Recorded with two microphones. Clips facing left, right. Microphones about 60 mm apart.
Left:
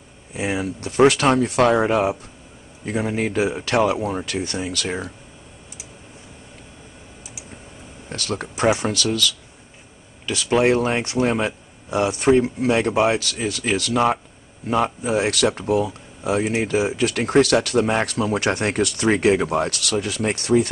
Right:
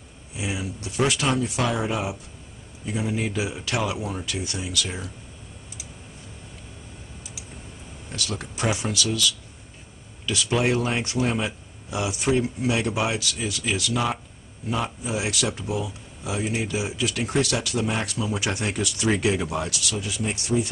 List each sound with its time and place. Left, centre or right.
0.3 s speech: left
8.1 s speech: left
10.2 s speech: left